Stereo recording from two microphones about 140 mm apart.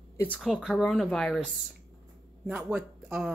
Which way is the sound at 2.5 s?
10° right (ahead or behind).